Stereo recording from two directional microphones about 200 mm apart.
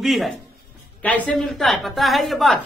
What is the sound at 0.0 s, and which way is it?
A woman's voice, centre (ahead or behind).